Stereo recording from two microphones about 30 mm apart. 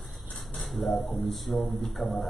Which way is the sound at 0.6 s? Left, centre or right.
Centre.